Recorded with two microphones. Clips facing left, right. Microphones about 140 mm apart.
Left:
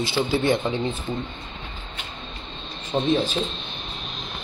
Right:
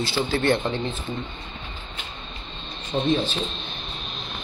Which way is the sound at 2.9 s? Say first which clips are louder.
Left 1 dB; 30° left (ahead or behind).